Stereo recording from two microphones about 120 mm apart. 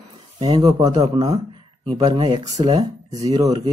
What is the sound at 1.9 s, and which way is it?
Speech, 50° right (ahead or behind).